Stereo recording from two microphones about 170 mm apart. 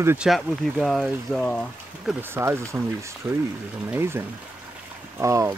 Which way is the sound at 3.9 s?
15° right (ahead or behind).